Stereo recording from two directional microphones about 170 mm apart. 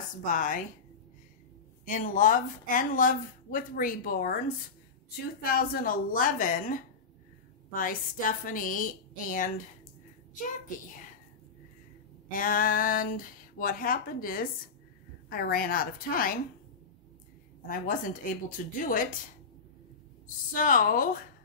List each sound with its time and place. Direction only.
0.2 s speech: 50° left (ahead or behind)
1.9 s speech: 50° left (ahead or behind)
5.4 s speech: 60° left (ahead or behind)
12.3 s speech: 55° left (ahead or behind)
17.6 s speech: 50° left (ahead or behind)
20.5 s speech: 55° left (ahead or behind)